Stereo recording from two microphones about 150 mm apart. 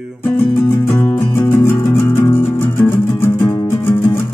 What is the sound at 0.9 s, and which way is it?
Music, 15° left (ahead or behind).